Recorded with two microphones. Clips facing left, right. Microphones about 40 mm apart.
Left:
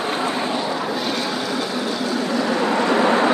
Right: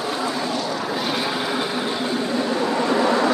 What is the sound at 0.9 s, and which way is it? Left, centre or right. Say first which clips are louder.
Vehicle: even; centre.